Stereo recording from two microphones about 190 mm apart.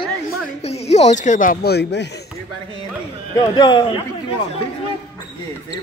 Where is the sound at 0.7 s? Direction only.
35° left (ahead or behind); by 2.0 s 60° left (ahead or behind).